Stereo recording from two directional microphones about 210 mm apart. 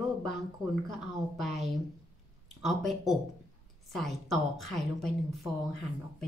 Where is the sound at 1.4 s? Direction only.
Centre (ahead or behind).